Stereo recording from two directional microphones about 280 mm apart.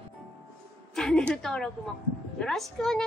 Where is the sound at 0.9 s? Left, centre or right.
Centre.